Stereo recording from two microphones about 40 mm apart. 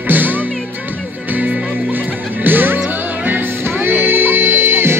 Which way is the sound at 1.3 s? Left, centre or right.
Right.